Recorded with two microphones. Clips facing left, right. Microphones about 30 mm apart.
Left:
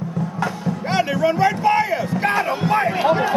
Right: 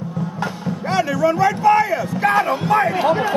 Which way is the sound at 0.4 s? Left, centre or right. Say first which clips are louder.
Left 2 dB; right.